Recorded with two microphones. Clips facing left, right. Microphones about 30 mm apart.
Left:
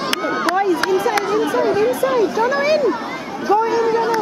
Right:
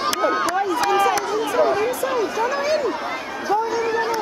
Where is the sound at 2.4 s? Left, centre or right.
Left.